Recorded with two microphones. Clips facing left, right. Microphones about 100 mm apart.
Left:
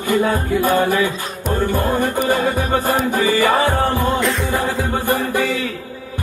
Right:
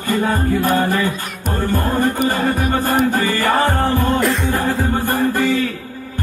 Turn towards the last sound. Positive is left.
turn(degrees=15)  # may be behind; listen again after turning